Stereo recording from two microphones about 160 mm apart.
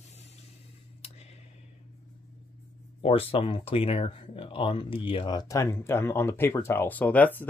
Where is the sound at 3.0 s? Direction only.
35° left (ahead or behind).